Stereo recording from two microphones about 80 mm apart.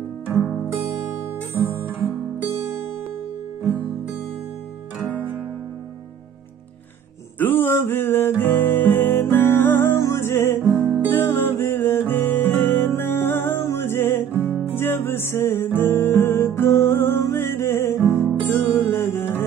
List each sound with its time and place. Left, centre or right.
1.6 s music: right
7.3 s music: left
10.7 s music: right
11.1 s music: left